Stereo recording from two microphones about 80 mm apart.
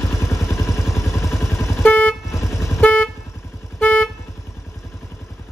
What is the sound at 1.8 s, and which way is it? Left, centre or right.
Vehicle, left.